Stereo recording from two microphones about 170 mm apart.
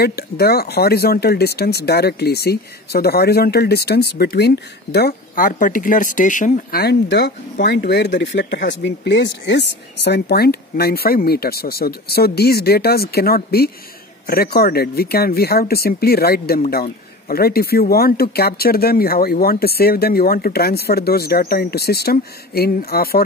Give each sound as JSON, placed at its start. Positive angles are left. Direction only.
{"t": 0.0, "sound": "speech", "side_deg": 65}
{"t": 6.8, "sound": "speech", "side_deg": 70}